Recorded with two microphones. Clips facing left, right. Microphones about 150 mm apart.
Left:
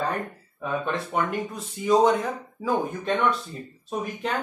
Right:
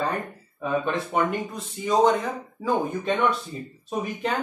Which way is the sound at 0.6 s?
Centre (ahead or behind).